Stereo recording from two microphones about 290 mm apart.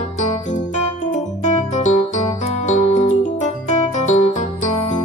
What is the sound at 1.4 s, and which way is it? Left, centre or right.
Music, left.